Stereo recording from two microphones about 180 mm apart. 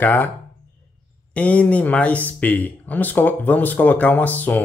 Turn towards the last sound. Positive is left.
turn(degrees=10)  # may be behind; listen again after turning